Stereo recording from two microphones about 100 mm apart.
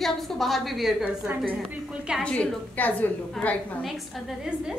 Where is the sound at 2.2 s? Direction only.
10° left (ahead or behind).